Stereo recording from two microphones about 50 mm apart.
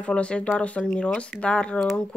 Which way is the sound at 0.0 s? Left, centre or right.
Left.